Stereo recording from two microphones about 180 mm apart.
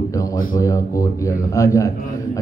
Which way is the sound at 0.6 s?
20° left (ahead or behind).